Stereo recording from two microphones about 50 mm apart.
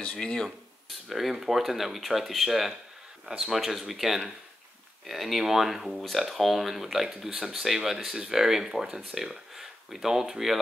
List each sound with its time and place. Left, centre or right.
0.0 s speech: centre
0.8 s speech: centre